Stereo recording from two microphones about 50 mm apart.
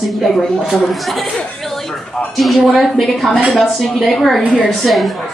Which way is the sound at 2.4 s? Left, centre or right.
Centre.